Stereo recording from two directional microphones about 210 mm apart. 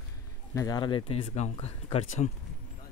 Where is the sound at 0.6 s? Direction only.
20° left (ahead or behind).